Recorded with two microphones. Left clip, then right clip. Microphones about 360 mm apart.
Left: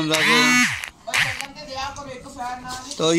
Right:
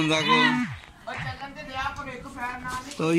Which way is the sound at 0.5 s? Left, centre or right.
Left.